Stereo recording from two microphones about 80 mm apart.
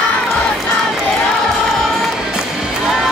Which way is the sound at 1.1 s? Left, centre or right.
Centre.